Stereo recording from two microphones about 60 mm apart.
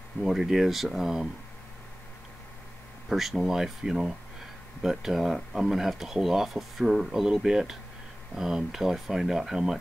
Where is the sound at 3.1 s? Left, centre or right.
Centre.